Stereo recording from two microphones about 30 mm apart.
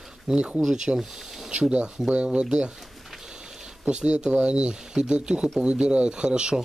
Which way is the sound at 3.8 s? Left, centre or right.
Right.